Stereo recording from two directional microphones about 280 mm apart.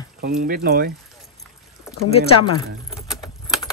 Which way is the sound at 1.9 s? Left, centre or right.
Centre.